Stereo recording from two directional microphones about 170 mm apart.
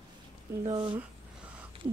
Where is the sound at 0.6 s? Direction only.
25° right (ahead or behind).